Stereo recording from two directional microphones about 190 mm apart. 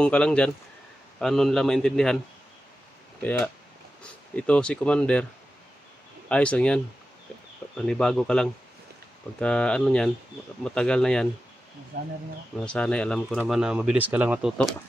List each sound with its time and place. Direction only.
0.0 s speech: 5° left (ahead or behind)
3.2 s speech: 10° left (ahead or behind)
6.2 s speech: 5° left (ahead or behind)
11.9 s speech: 45° right (ahead or behind)
12.5 s speech: 5° left (ahead or behind)